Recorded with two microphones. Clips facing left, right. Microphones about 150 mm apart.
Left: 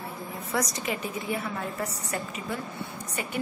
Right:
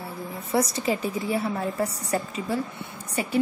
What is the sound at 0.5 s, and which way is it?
A woman's voice, 30° right (ahead or behind).